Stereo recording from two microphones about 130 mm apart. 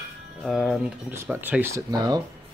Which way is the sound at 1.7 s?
30° right (ahead or behind).